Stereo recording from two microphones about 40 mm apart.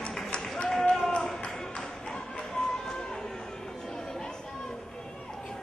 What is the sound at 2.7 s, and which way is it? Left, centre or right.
Run, centre.